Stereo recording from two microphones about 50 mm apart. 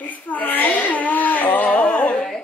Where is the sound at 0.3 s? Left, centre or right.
Left.